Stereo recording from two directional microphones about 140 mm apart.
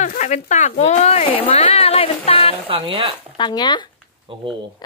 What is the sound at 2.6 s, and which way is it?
Speech, 40° right (ahead or behind).